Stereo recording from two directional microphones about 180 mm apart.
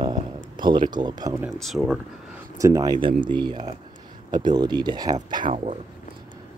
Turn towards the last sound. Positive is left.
turn(degrees=-40)  # may be behind; listen again after turning